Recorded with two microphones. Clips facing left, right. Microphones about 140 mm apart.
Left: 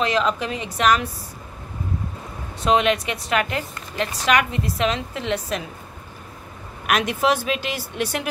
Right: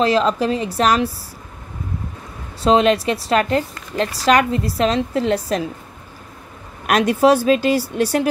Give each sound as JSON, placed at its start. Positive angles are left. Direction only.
{"t": 0.0, "sound": "speech", "side_deg": -35}
{"t": 2.6, "sound": "speech", "side_deg": -35}
{"t": 6.9, "sound": "speech", "side_deg": -35}